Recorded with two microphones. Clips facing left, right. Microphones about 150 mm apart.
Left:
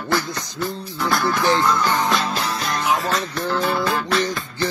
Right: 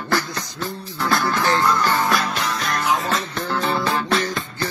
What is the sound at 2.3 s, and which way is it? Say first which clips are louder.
Music: even; 35° left (ahead or behind).